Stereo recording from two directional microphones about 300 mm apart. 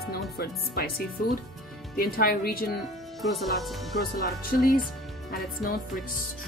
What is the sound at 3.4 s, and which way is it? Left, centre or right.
Speech, centre.